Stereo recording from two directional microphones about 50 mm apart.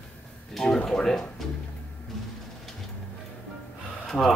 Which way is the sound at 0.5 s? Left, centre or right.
Centre.